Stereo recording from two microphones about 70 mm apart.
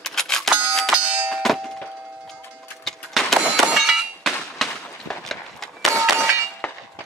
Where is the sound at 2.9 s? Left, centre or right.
Centre.